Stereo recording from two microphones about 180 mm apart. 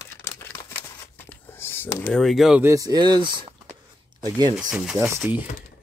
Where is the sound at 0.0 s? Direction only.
15° left (ahead or behind).